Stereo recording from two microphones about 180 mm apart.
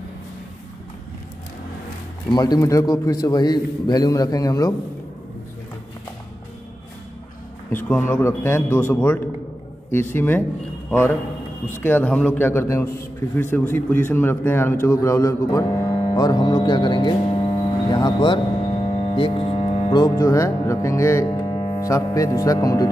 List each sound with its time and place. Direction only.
2.3 s a man's voice: 20° left (ahead or behind)
7.7 s a man's voice: 10° left (ahead or behind)
11.8 s a man's voice: 10° left (ahead or behind)